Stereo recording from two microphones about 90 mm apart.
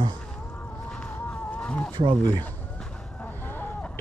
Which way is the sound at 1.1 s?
20° left (ahead or behind).